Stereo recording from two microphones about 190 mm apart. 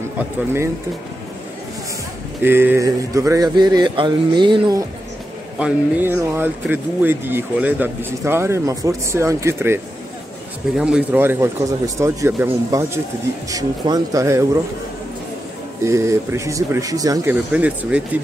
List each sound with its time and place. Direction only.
2.4 s a sound: 10° right (ahead or behind)
5.6 s speech: 10° right (ahead or behind)
10.8 s speech: 5° right (ahead or behind)
15.8 s speech: 15° right (ahead or behind)